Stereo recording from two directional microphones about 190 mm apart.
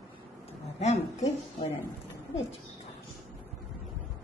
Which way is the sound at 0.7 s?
35° left (ahead or behind).